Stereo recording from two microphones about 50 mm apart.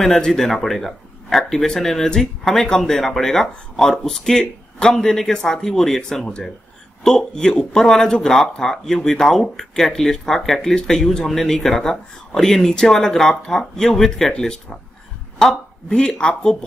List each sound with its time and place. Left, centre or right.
0.0 s speech: centre